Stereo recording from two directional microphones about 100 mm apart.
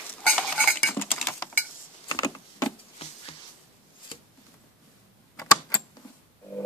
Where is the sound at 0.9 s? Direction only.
20° left (ahead or behind).